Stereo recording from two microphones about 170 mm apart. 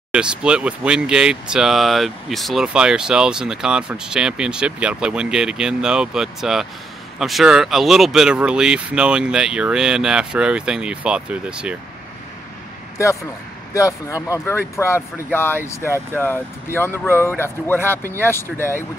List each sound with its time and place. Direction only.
0.1 s speech: 5° right (ahead or behind)
12.9 s speech: 20° left (ahead or behind)